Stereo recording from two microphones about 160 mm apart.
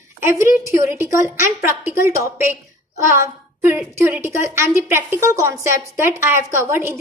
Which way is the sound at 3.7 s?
15° right (ahead or behind).